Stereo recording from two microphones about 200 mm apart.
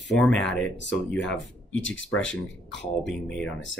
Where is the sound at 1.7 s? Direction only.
75° left (ahead or behind).